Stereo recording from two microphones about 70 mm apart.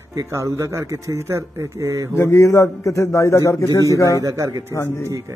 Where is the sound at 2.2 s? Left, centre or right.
Left.